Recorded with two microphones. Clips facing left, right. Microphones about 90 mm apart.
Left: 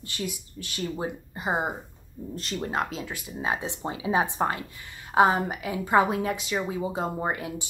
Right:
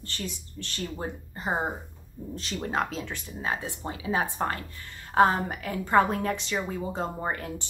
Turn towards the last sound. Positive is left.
turn(degrees=10)  # may be behind; listen again after turning